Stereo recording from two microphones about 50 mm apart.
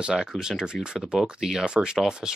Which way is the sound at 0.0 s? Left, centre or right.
Centre.